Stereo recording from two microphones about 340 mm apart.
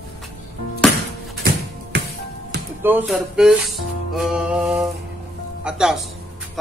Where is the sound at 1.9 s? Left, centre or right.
Right.